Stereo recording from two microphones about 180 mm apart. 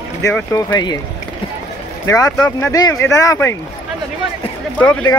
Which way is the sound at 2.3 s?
15° left (ahead or behind).